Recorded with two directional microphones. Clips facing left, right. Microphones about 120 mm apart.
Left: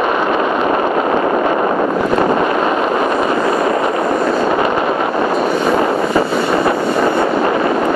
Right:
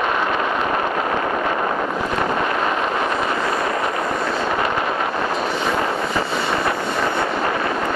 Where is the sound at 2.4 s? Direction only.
40° left (ahead or behind).